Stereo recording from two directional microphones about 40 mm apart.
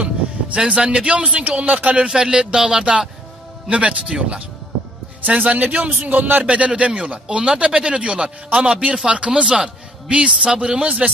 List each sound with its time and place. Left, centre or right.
0.6 s a man's voice: right
2.0 s speech: centre
3.6 s a man's voice: right
5.2 s a man's voice: right
6.4 s a man's voice: right